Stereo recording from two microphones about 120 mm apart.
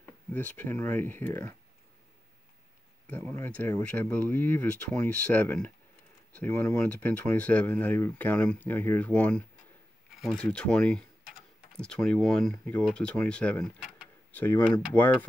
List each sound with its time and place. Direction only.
0.0 s speech: 15° left (ahead or behind)
3.1 s speech: 20° left (ahead or behind)